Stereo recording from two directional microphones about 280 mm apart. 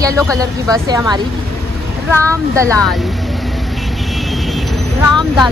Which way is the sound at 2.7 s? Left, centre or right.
Centre.